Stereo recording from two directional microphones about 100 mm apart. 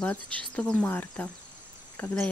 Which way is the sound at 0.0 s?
10° left (ahead or behind).